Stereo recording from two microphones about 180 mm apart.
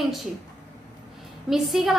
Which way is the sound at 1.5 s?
Centre (ahead or behind).